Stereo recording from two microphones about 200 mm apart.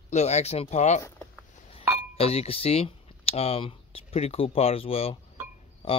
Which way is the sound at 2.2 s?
30° left (ahead or behind).